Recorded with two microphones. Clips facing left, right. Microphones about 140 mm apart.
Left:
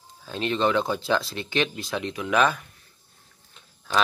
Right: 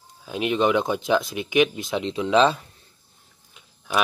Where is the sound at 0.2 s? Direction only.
15° right (ahead or behind).